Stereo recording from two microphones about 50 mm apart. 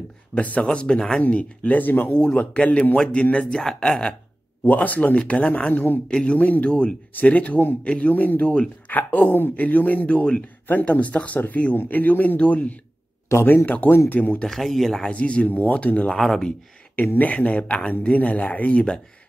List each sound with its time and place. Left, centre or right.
0.6 s speech: centre
1.2 s a man's voice: left
2.1 s speech: centre
3.6 s speech: centre
4.6 s a man's voice: left
13.3 s speech: left
13.7 s a man's voice: left
14.5 s speech: centre
15.0 s speech: left
16.2 s speech: centre
16.9 s speech: left